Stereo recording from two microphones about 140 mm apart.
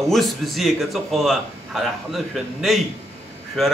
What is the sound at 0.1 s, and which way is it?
A man's voice, centre (ahead or behind).